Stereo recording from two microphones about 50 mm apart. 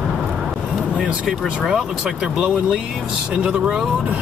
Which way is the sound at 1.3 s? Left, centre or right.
Centre.